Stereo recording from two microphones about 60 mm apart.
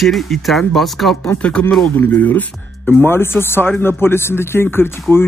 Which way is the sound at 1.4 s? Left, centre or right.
Centre.